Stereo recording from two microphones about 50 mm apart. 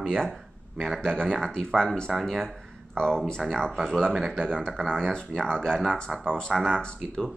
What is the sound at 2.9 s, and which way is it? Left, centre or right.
Speech, centre.